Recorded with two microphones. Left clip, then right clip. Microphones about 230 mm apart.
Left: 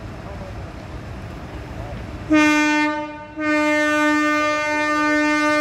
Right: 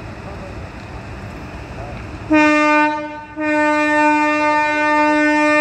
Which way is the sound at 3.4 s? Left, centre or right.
Centre.